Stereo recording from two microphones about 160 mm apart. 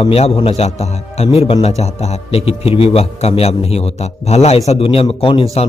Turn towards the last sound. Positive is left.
turn(degrees=40)  # may be behind; listen again after turning